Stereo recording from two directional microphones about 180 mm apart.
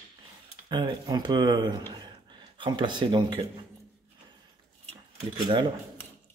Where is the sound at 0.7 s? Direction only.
25° right (ahead or behind).